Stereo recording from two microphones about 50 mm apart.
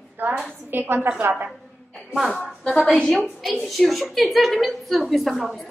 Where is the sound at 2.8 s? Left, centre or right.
Left.